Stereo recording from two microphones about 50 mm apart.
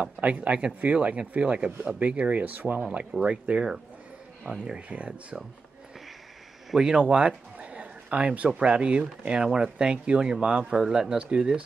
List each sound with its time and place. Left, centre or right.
0.0 s speech: right
6.7 s speech: centre
7.0 s a sound: right
8.5 s speech: right